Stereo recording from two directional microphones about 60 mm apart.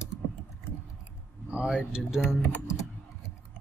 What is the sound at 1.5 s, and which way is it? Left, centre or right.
Speech, centre.